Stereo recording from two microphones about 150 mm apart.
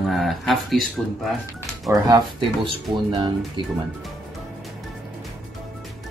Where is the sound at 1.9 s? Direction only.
30° right (ahead or behind).